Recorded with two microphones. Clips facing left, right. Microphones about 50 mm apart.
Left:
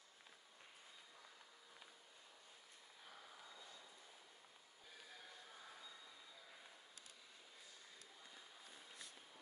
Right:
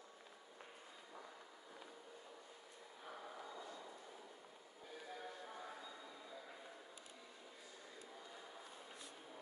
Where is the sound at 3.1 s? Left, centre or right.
Right.